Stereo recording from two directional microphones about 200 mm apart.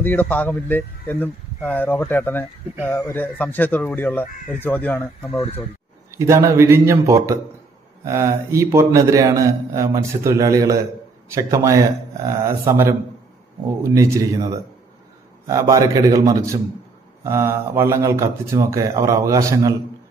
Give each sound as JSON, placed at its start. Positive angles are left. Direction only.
{"t": 0.0, "sound": "a man's voice", "side_deg": 10}
{"t": 6.1, "sound": "a man's voice", "side_deg": -15}